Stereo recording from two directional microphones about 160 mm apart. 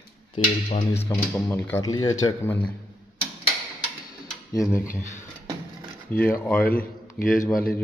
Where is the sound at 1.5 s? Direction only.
15° left (ahead or behind).